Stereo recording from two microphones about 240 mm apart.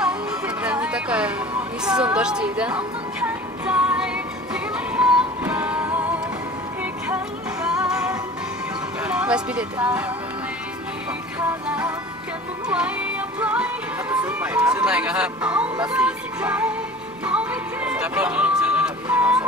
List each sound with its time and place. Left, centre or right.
0.0 s music: centre
1.9 s speech: centre
4.7 s music: centre
7.6 s music: centre
9.0 s a sound: centre
11.3 s music: centre
14.1 s speech: centre
17.2 s music: centre